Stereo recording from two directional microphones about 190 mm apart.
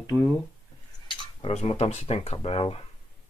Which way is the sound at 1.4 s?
30° left (ahead or behind).